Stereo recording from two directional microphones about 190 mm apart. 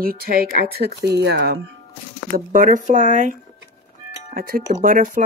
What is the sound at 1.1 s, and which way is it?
Speech, 60° right (ahead or behind).